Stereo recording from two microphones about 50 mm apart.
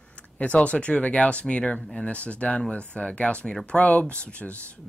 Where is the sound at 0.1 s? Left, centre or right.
Left.